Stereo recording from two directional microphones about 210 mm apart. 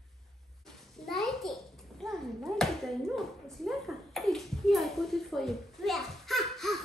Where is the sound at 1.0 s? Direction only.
Centre (ahead or behind).